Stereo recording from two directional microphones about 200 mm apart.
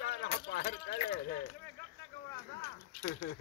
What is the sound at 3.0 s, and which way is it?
Speech, 60° left (ahead or behind).